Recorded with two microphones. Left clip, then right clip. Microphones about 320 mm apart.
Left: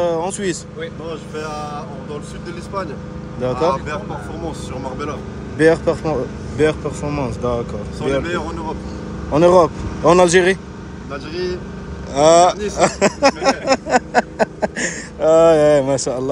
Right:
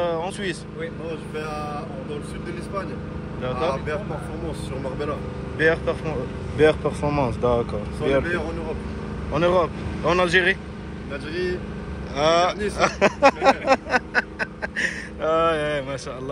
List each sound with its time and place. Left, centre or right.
0.0 s vehicle: centre
3.4 s speech: centre
5.6 s speech: centre
6.6 s speech: centre
9.3 s speech: centre
12.1 s speech: centre